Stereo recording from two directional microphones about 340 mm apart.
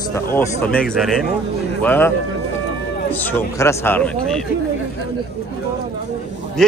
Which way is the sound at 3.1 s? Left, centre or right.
Centre.